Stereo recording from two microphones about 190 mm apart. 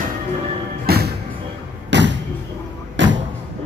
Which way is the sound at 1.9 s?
65° right (ahead or behind).